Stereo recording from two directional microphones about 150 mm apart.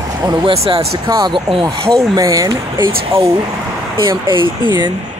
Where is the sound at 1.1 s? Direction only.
25° right (ahead or behind).